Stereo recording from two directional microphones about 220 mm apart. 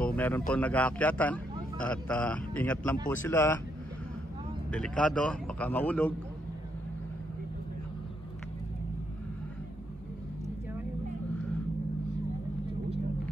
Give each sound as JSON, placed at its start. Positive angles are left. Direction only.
{"t": 0.0, "sound": "a sound", "side_deg": 5}
{"t": 0.5, "sound": "a man's voice", "side_deg": 5}
{"t": 4.6, "sound": "a man's voice", "side_deg": 5}